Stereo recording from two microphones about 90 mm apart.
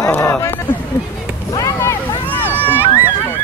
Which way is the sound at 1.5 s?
40° left (ahead or behind).